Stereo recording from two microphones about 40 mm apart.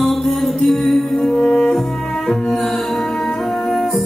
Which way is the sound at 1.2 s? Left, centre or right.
Centre.